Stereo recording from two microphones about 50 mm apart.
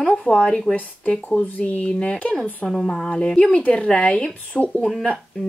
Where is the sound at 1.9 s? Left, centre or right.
Centre.